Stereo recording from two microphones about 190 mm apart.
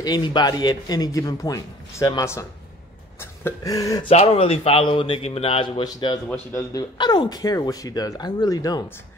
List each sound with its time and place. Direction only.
0.0 s speech: 20° left (ahead or behind)
4.1 s speech: 30° left (ahead or behind)